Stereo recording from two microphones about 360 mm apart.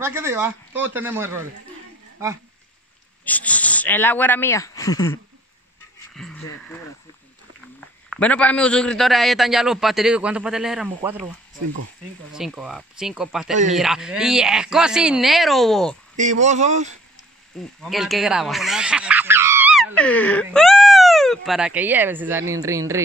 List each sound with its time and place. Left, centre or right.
0.0 s speech: centre
3.3 s speech: centre
8.1 s a man's voice: centre
12.4 s a man's voice: centre
16.2 s speech: centre
17.8 s speech: centre